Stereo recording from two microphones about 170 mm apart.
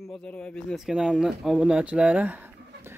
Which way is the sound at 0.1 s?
5° left (ahead or behind).